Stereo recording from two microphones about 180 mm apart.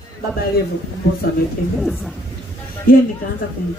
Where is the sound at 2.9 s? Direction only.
55° left (ahead or behind).